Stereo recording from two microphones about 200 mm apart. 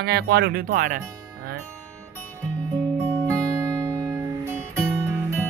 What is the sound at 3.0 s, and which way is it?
Music, 15° right (ahead or behind).